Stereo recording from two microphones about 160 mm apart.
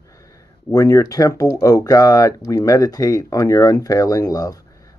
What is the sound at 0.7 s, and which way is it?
Speech, 20° left (ahead or behind).